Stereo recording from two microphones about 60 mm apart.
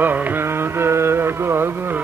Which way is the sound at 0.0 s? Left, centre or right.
Right.